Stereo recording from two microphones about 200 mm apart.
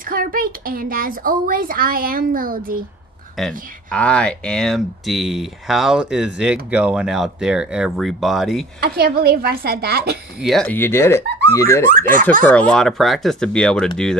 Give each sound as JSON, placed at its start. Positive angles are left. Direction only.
{"t": 0.1, "sound": "speech", "side_deg": -45}
{"t": 3.3, "sound": "speech", "side_deg": 5}
{"t": 8.8, "sound": "speech", "side_deg": -50}
{"t": 10.4, "sound": "speech", "side_deg": 0}
{"t": 11.9, "sound": "speech", "side_deg": -40}
{"t": 12.4, "sound": "speech", "side_deg": 5}